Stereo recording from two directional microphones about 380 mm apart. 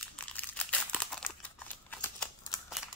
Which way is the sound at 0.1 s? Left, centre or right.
Centre.